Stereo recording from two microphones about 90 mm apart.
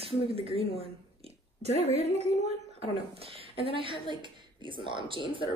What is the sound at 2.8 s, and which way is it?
Speech, 90° right.